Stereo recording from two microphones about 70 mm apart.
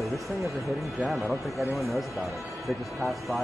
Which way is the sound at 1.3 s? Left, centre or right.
Centre.